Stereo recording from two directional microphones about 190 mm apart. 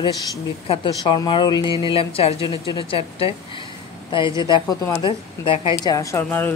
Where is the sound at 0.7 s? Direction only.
25° left (ahead or behind).